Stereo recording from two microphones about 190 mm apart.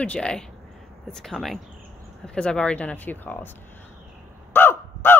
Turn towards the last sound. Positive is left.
turn(degrees=10)  # may be behind; listen again after turning